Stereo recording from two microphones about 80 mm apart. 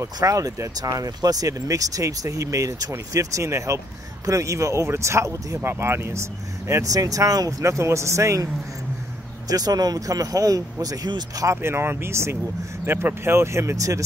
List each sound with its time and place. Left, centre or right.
0.0 s speech: right
6.7 s speech: right
9.5 s speech: right
11.5 s speech: right